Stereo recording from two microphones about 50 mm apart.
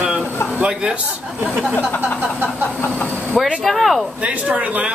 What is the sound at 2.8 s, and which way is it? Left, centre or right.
Speech, left.